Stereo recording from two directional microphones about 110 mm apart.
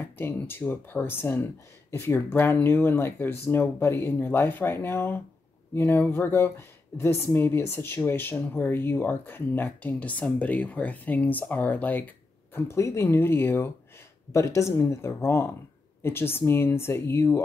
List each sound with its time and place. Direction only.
0.0 s speech: 20° left (ahead or behind)